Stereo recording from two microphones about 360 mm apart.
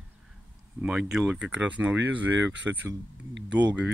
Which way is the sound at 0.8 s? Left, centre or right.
Centre.